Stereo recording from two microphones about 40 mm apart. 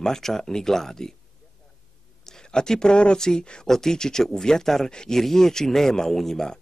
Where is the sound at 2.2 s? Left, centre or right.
Centre.